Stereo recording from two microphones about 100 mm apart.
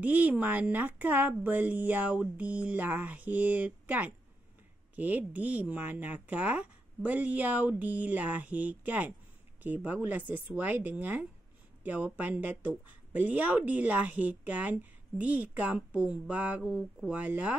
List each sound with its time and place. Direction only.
0.0 s speech: 15° right (ahead or behind)